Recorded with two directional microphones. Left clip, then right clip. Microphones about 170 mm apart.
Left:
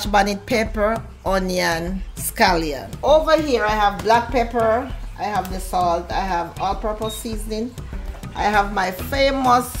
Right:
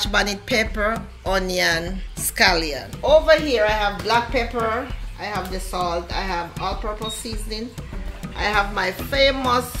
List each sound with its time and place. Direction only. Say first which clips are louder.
0.0 s speech: left 3 dB; 90° left